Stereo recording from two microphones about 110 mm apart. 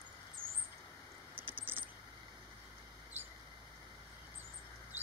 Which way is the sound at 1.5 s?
15° right (ahead or behind).